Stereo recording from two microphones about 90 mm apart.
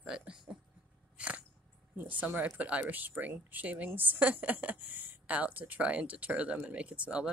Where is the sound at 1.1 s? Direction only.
15° right (ahead or behind).